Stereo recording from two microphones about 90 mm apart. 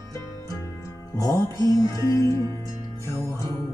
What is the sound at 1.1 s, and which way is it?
Music, 40° left (ahead or behind).